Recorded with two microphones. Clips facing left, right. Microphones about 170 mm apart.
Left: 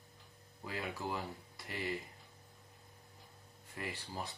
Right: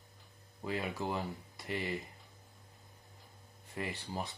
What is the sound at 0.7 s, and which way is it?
Speech, 25° right (ahead or behind).